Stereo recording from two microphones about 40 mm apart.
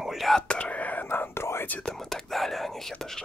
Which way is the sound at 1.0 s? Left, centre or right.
Left.